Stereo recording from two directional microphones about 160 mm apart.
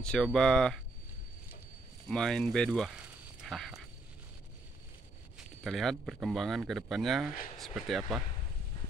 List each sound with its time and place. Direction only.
0.0 s speech: 5° left (ahead or behind)
2.0 s speech: 5° left (ahead or behind)
5.6 s speech: centre (ahead or behind)